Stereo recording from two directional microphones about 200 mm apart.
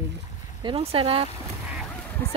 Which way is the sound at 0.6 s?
25° right (ahead or behind).